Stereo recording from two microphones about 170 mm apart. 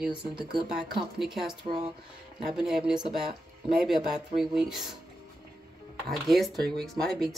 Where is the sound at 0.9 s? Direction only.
Centre (ahead or behind).